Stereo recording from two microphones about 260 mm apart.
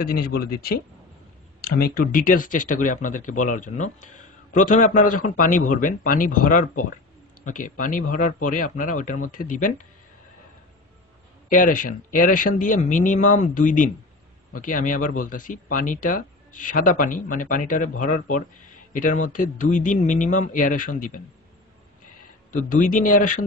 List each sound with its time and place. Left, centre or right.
0.0 s speech: left
11.4 s speech: left
22.5 s speech: left